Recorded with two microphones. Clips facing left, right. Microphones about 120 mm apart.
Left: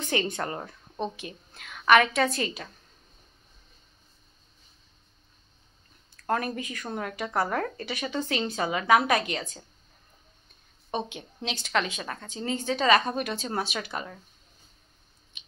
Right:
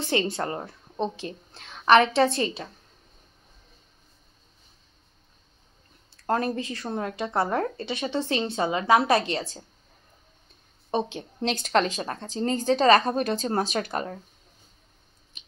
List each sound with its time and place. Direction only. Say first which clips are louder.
0.0 s a woman's voice: right 3 dB; 25° right (ahead or behind)
6.2 s speech: right 3 dB; 30° right (ahead or behind)
10.9 s a woman's voice: right 5 dB; 35° right (ahead or behind)
15.3 s a sound: right 1 dB; 40° right (ahead or behind)